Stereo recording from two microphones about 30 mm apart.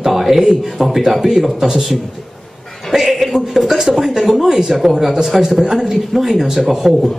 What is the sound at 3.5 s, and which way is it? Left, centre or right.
Speech, centre.